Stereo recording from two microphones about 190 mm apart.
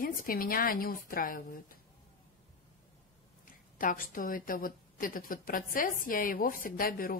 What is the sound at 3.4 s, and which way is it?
A woman's voice, 45° left (ahead or behind).